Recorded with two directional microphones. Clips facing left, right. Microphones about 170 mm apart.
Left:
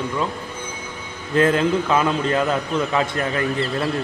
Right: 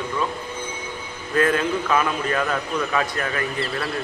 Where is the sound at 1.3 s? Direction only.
25° left (ahead or behind).